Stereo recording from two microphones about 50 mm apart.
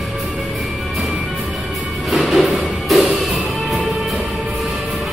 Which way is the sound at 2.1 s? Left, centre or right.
Centre.